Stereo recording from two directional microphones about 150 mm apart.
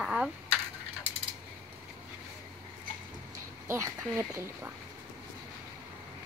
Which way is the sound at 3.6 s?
20° right (ahead or behind).